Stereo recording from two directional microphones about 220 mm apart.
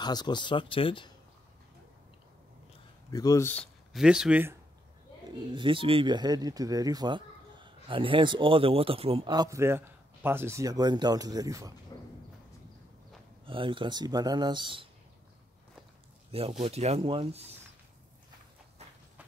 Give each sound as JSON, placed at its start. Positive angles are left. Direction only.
{"t": 0.0, "sound": "speech", "side_deg": 20}
{"t": 3.1, "sound": "speech", "side_deg": 15}
{"t": 3.9, "sound": "speech", "side_deg": -5}
{"t": 5.5, "sound": "speech", "side_deg": -20}
{"t": 11.9, "sound": "a sound", "side_deg": 15}
{"t": 13.5, "sound": "speech", "side_deg": -25}
{"t": 16.3, "sound": "speech", "side_deg": -25}